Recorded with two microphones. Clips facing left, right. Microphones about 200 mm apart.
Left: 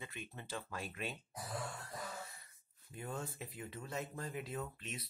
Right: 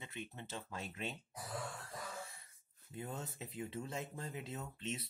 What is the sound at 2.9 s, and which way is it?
Speech, 20° right (ahead or behind).